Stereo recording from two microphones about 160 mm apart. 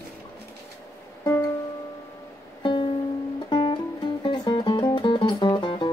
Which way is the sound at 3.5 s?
30° left (ahead or behind).